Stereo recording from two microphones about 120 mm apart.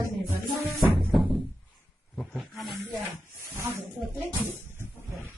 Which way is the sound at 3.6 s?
20° right (ahead or behind).